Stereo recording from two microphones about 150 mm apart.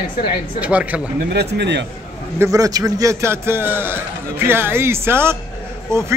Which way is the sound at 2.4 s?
20° right (ahead or behind).